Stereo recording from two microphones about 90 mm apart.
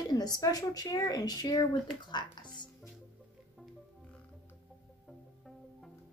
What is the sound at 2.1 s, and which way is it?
Music, 55° left (ahead or behind).